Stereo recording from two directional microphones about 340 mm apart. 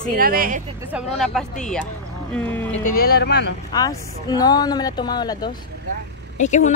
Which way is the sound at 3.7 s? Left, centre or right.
Centre.